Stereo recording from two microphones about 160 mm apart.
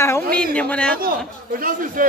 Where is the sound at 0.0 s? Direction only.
15° left (ahead or behind).